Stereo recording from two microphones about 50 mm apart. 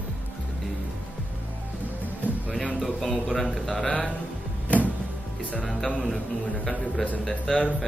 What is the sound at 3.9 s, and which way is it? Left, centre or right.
Speech, left.